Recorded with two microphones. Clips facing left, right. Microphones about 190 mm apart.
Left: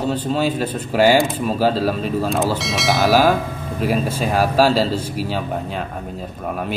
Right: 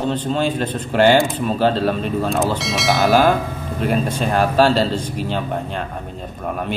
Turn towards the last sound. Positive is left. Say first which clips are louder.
# even
turn(degrees=5)  # may be behind; listen again after turning